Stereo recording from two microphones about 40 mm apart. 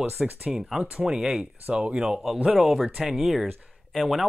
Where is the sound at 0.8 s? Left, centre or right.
Right.